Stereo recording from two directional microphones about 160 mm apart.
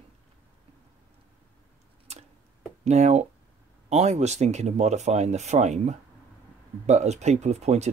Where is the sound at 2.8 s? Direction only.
45° right (ahead or behind).